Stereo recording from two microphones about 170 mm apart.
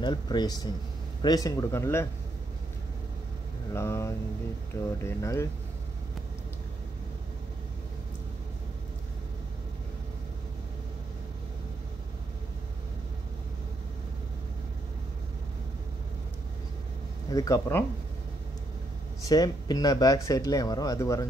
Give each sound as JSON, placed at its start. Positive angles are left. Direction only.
{"t": 0.0, "sound": "speech", "side_deg": 25}
{"t": 3.7, "sound": "speech", "side_deg": 15}
{"t": 17.3, "sound": "speech", "side_deg": 20}
{"t": 19.2, "sound": "speech", "side_deg": 25}